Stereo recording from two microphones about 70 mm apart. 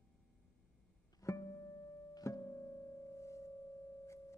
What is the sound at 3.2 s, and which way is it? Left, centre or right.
Sine wave, left.